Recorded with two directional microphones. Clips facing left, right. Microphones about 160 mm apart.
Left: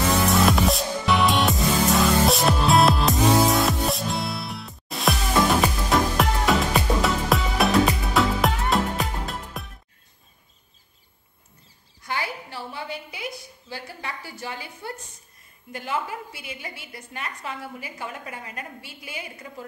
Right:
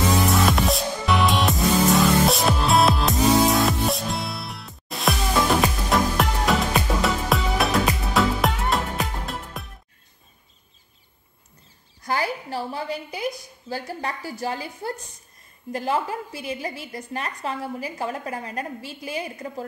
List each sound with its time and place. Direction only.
0.3 s music: centre (ahead or behind)
12.0 s a sound: 40° right (ahead or behind)
15.7 s a woman's voice: 35° right (ahead or behind)